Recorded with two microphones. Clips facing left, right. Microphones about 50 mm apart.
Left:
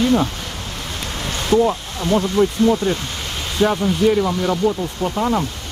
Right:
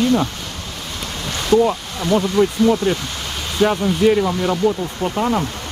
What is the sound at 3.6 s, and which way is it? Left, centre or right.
Speech, centre.